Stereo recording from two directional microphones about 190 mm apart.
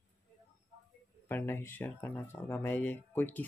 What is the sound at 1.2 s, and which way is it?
Speech, 10° left (ahead or behind).